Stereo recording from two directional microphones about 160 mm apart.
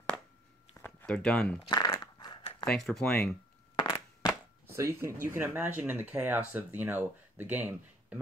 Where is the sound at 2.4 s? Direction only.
40° left (ahead or behind).